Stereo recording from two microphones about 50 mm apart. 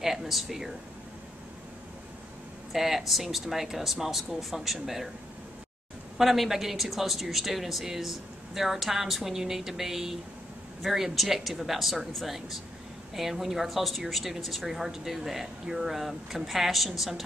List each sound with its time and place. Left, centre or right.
0.0 s a sound: centre
2.7 s a woman's voice: centre
6.1 s a woman's voice: centre